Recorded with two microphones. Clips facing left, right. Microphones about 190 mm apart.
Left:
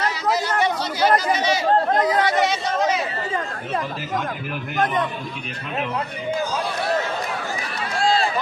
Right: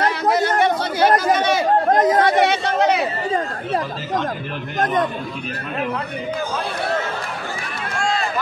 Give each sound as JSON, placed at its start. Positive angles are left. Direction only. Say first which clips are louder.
{"t": 0.0, "sound": "chatter", "louder": "right 4 dB", "side_deg": -55}
{"t": 7.9, "sound": "run", "louder": "left 3 dB", "side_deg": 35}